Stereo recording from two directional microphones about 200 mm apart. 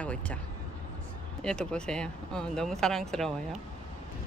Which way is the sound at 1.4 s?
5° left (ahead or behind).